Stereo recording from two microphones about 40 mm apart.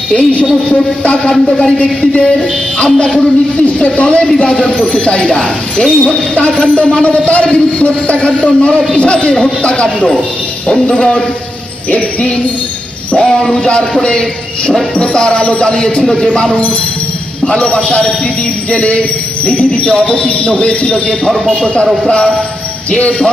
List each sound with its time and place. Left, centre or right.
0.1 s speech: left
9.8 s a man's voice: centre
10.9 s speech: left
13.1 s speech: centre
15.0 s speech: left
16.0 s speech: centre
17.5 s speech: left
22.8 s speech: left